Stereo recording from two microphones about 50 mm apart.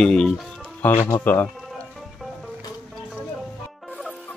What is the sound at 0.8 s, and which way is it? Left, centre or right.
Speech, left.